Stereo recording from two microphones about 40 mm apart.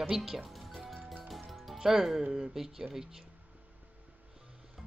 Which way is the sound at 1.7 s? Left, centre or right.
Centre.